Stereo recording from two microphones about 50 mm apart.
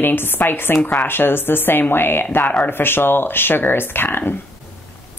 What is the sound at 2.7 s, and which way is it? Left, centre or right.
A woman's voice, left.